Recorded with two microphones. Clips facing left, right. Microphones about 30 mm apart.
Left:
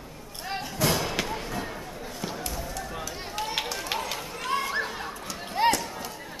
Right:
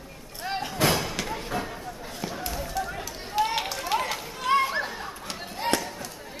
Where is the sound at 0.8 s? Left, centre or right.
Right.